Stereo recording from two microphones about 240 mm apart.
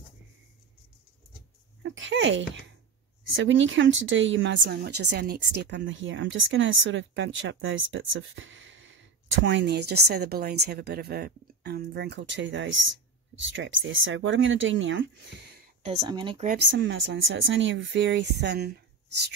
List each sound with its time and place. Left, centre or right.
1.8 s speech: right
16.0 s speech: centre
16.4 s speech: right